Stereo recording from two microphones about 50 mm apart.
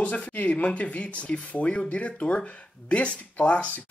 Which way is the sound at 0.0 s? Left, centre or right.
Left.